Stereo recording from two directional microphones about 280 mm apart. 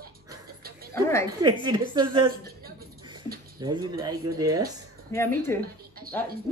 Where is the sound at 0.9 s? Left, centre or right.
Centre.